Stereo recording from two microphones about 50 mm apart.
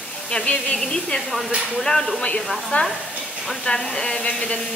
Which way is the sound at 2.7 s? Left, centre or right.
Left.